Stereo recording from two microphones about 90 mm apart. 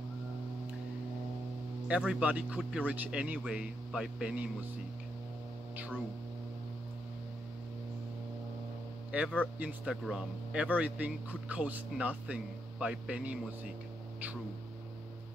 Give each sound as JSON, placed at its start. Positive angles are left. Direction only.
{"t": 1.9, "sound": "speech", "side_deg": -10}
{"t": 9.1, "sound": "speech", "side_deg": -15}